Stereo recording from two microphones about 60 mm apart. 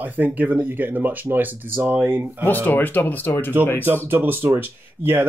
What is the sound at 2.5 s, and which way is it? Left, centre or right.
Speech, left.